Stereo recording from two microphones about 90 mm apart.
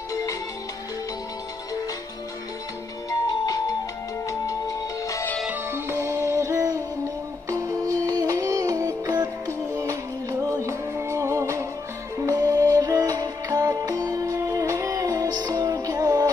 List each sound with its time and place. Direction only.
3.1 s music: 45° left (ahead or behind)
5.5 s music: 30° right (ahead or behind); by 16.3 s 45° right (ahead or behind)